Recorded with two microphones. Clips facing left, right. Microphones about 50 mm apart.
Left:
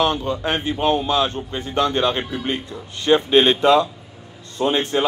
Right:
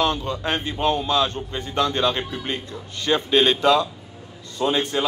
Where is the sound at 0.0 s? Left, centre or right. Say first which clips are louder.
Left 3 dB; left.